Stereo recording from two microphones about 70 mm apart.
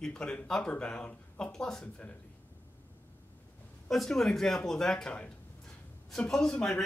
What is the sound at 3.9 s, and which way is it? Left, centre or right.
Speech, centre.